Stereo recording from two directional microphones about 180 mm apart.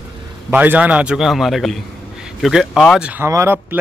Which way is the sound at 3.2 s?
15° right (ahead or behind).